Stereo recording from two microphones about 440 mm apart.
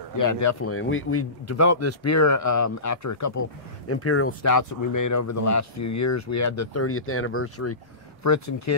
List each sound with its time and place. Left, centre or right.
0.2 s speech: left